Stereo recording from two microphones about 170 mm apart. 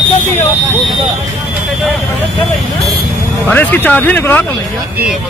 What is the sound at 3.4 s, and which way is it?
Speech, 10° left (ahead or behind).